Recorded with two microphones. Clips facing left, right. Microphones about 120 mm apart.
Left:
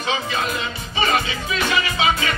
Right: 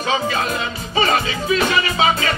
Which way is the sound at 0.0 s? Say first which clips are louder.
Right 3 dB; 35° right (ahead or behind).